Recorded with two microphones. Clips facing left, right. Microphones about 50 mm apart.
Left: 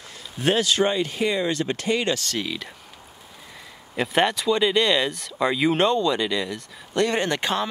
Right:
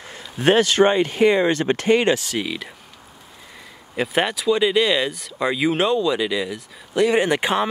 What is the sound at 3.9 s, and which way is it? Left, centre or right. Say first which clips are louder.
Speech: even; centre.